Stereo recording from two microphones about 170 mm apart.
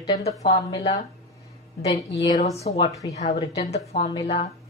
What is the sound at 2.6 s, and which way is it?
A woman's voice, 30° left (ahead or behind).